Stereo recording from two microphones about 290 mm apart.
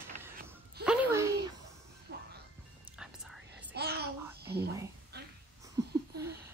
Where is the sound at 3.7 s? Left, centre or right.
Right.